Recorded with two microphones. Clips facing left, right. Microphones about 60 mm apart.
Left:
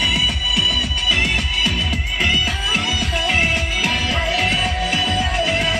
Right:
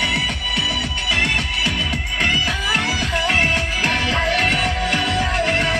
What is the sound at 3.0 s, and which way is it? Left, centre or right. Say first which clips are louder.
Music: right 1 dB; right.